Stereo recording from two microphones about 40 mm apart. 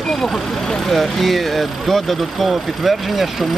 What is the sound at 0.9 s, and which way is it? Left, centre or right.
Speech, centre.